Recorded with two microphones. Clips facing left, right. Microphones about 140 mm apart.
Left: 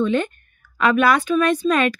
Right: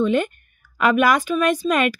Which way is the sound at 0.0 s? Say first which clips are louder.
Right 1 dB; 10° right (ahead or behind).